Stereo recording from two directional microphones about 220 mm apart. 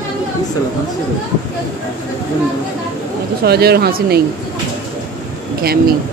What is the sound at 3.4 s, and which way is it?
Speech, 45° right (ahead or behind).